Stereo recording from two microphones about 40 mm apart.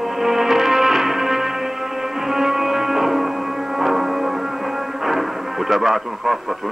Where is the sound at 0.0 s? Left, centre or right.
Centre.